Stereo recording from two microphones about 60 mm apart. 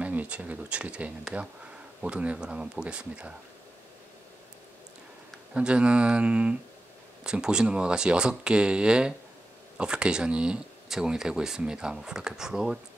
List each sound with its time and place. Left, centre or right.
0.0 s speech: right
5.5 s speech: centre